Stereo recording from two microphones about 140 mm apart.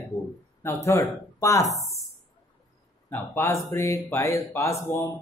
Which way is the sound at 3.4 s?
20° left (ahead or behind).